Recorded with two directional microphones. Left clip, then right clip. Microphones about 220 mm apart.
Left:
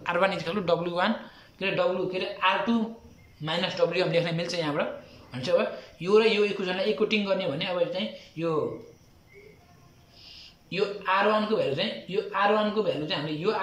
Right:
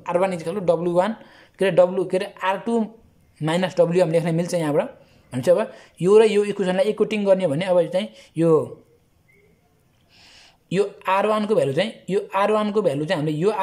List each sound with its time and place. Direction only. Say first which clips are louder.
0.0 s a man's voice: right 4 dB; 25° right (ahead or behind)
10.7 s a man's voice: right 5 dB; 25° right (ahead or behind)